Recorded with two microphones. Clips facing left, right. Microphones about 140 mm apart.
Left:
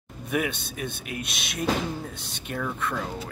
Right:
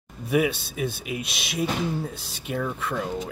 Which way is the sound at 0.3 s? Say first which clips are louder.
Right 5 dB; 5° right (ahead or behind).